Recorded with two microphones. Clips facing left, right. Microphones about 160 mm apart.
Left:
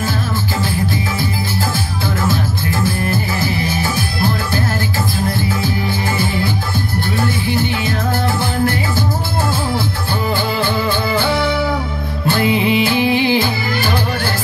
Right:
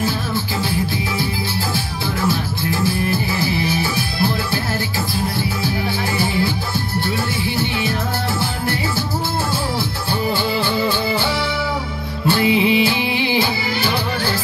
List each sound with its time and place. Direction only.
3.6 s music: 50° left (ahead or behind)
7.2 s music: 50° left (ahead or behind)
10.3 s music: 50° left (ahead or behind)